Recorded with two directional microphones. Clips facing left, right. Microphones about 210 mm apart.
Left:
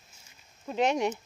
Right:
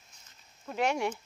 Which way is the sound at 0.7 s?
20° left (ahead or behind).